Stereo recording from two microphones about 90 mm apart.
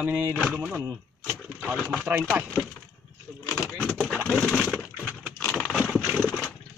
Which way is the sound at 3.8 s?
5° left (ahead or behind).